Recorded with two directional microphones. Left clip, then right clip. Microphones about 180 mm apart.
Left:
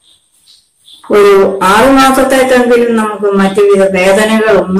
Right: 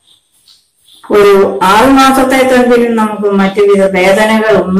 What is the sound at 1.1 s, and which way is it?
A man's voice, centre (ahead or behind).